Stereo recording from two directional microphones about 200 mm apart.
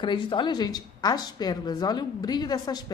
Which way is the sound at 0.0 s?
25° left (ahead or behind).